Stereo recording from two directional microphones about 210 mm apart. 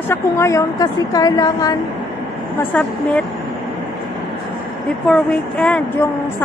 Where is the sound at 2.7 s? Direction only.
5° left (ahead or behind).